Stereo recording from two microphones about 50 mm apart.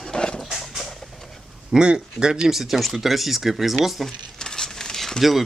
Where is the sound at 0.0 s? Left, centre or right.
Centre.